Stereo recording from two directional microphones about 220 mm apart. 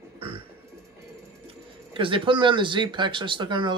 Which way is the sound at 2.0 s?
25° right (ahead or behind).